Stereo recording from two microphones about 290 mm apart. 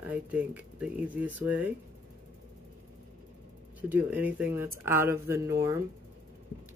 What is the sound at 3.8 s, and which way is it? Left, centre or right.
Speech, centre.